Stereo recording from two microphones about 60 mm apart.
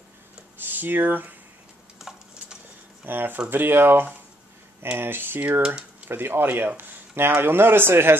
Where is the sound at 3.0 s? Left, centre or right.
Right.